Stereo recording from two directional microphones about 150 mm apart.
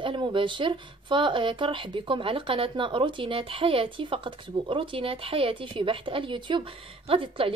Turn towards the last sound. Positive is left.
turn(degrees=-35)  # may be behind; listen again after turning